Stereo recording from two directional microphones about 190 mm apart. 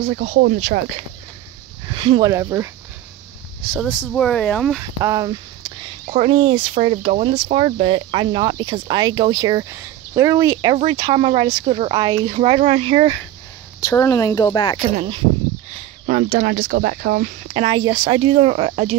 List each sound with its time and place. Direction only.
0.0 s speech: 45° right (ahead or behind)
1.9 s a sound: 25° right (ahead or behind)
2.3 s speech: 15° right (ahead or behind)
3.9 s speech: 5° left (ahead or behind)
5.0 s speech: 20° right (ahead or behind)
11.0 s speech: 25° right (ahead or behind)
11.9 s speech: 20° right (ahead or behind)
13.7 s speech: 15° left (ahead or behind)
15.0 s speech: 25° right (ahead or behind)
16.1 s speech: 50° right (ahead or behind)
17.6 s speech: 25° right (ahead or behind)